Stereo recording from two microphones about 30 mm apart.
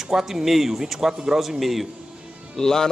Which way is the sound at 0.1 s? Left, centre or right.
Centre.